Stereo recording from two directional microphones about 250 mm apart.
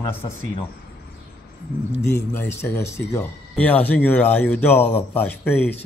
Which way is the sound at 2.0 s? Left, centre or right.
Centre.